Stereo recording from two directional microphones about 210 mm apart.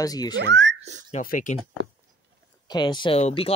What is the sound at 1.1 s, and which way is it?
Speech, 40° left (ahead or behind).